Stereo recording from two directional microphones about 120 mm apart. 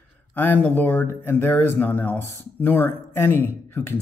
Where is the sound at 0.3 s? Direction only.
15° left (ahead or behind).